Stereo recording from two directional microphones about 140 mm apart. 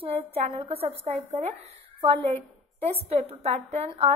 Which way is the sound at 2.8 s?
45° right (ahead or behind).